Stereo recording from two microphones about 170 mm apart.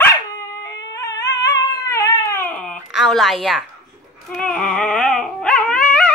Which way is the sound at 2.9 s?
Centre (ahead or behind).